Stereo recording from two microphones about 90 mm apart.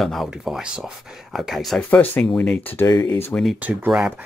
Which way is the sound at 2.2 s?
10° left (ahead or behind).